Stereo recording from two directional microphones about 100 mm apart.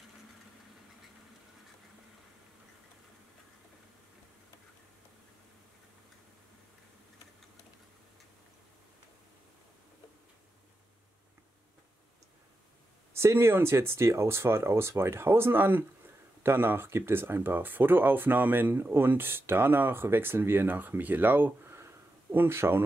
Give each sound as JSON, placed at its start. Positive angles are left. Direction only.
{"t": 13.1, "sound": "speech", "side_deg": -25}